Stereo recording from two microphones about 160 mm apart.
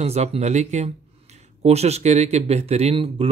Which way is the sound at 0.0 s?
40° right (ahead or behind).